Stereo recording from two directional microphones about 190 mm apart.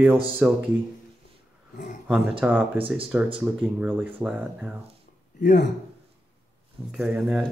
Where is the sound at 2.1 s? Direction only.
10° right (ahead or behind).